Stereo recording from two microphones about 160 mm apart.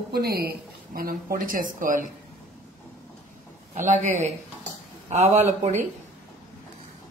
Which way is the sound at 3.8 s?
45° right (ahead or behind).